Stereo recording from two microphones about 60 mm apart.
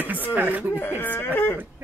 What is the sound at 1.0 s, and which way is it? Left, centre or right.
Speech, left.